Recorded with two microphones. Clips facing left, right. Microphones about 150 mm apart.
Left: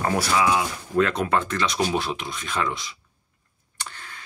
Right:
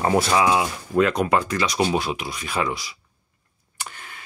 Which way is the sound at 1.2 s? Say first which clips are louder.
Right 2 dB; 10° right (ahead or behind).